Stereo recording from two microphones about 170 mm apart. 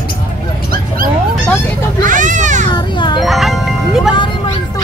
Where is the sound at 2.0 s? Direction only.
50° right (ahead or behind).